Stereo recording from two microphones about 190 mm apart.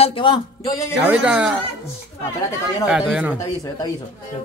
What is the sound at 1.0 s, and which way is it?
Speech, 5° right (ahead or behind).